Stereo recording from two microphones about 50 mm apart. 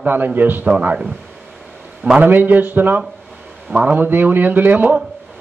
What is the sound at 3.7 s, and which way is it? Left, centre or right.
Speech, right.